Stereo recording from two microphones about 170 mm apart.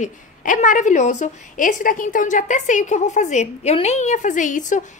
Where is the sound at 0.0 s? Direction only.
50° left (ahead or behind).